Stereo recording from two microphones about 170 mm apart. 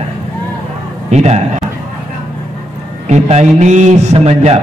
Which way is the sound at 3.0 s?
40° right (ahead or behind).